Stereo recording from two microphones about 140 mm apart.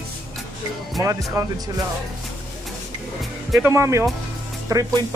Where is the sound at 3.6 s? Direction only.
20° right (ahead or behind).